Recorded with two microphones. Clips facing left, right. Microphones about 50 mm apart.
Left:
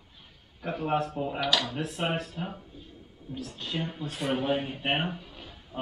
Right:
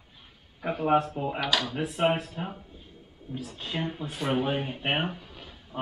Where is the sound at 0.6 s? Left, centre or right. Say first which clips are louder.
Right 4 dB; centre.